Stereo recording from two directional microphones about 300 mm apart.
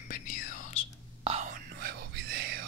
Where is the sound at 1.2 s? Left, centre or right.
Right.